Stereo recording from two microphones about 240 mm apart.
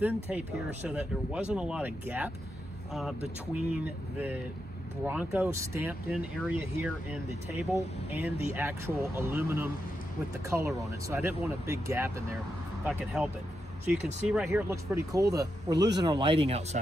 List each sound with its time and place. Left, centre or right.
0.0 s speech: centre; by 16.6 s right